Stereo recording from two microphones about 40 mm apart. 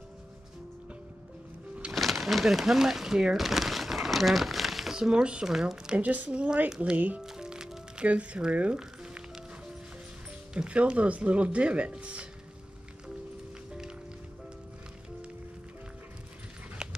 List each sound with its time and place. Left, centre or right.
2.0 s a sound: centre
2.6 s speech: centre
3.3 s crumpling: centre
4.9 s speech: right
5.5 s speech: centre
5.9 s speech: right
7.2 s music: centre
8.0 s speech: right
10.7 s speech: right